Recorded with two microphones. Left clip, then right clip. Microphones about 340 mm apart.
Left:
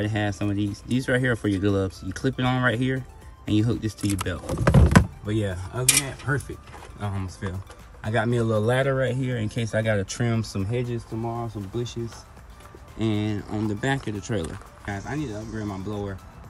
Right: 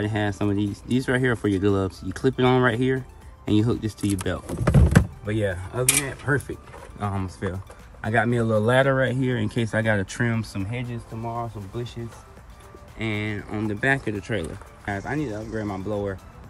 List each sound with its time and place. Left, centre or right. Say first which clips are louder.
0.0 s speech: right 2 dB; centre
13.0 s speech: left 1 dB; centre